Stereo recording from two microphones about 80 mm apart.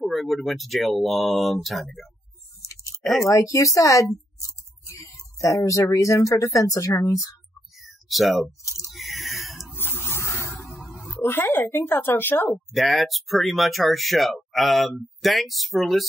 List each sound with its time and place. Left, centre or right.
0.0 s speech: centre
2.7 s a sound: left
3.0 s speech: centre
3.3 s a woman's voice: left
7.7 s a sound: centre
8.6 s a sound: left
8.9 s chewing: centre
9.8 s music: left
10.6 s music: centre
11.2 s a woman's voice: left
12.7 s speech: centre